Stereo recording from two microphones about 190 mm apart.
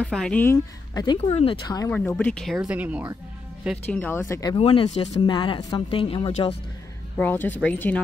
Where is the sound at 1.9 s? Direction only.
5° left (ahead or behind).